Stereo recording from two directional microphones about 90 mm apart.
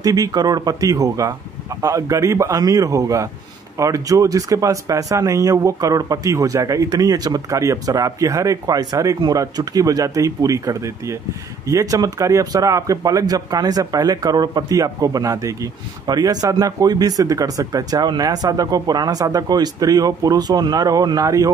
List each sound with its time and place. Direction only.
0.0 s speech: 45° right (ahead or behind)